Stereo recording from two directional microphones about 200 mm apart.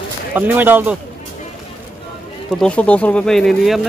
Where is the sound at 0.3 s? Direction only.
10° right (ahead or behind).